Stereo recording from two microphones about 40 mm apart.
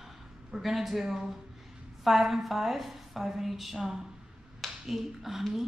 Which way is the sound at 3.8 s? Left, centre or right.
Centre.